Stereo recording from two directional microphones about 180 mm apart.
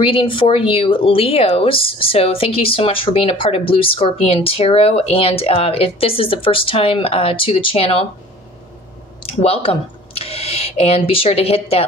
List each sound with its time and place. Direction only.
0.0 s speech: 30° left (ahead or behind)
9.2 s speech: 35° left (ahead or behind)